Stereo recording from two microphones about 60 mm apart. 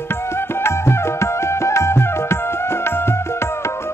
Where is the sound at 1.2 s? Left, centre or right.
Left.